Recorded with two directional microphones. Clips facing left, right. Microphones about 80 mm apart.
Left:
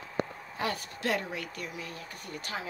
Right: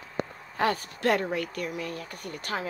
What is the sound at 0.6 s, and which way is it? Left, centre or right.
Speech, right.